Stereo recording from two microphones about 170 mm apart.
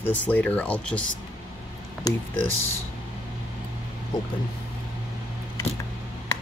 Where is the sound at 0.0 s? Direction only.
10° left (ahead or behind).